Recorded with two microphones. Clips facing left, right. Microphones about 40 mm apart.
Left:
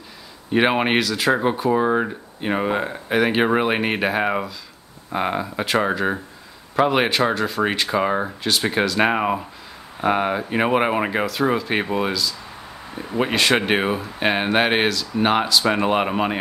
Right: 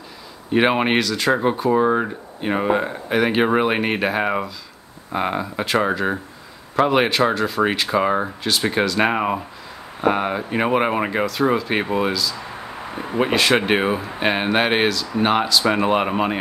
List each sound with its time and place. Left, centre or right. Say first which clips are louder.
0.5 s speech: right 1 dB; centre
12.9 s a sound: right 1 dB; right
13.2 s speech: right 1 dB; centre